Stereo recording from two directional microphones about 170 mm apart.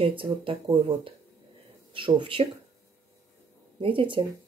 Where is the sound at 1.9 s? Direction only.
30° right (ahead or behind).